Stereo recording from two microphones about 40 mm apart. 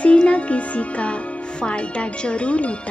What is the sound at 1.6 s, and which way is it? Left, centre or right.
A woman's voice, left.